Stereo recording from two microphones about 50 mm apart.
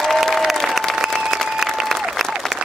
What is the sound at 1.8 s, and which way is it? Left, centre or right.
Applause, centre.